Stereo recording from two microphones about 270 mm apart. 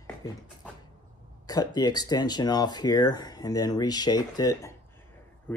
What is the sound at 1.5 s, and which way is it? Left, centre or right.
Speech, centre.